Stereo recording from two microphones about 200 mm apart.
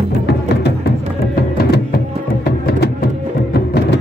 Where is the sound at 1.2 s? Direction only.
50° left (ahead or behind).